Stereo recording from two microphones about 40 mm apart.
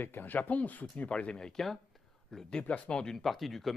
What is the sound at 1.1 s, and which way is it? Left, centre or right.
Speech, left.